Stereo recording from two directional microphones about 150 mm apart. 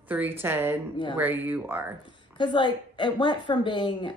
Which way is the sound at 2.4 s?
30° left (ahead or behind).